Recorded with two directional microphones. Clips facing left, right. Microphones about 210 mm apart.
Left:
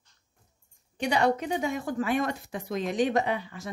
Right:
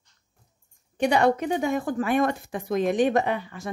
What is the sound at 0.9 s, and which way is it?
Speech, 55° right (ahead or behind).